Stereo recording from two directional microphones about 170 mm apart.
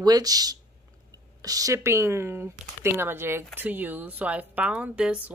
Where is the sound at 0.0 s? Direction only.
20° right (ahead or behind).